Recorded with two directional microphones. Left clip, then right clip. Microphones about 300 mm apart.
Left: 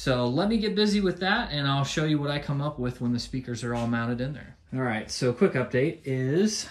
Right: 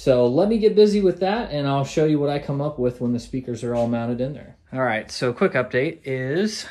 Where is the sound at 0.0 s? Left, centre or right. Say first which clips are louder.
Right 9 dB; centre.